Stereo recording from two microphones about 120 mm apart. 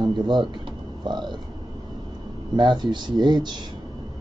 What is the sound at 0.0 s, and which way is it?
Speech, 40° right (ahead or behind).